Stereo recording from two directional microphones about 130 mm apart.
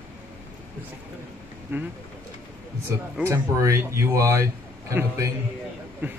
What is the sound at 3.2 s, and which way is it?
Speech, 20° right (ahead or behind).